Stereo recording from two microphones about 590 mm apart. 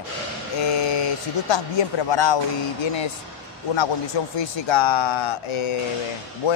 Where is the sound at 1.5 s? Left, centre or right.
Left.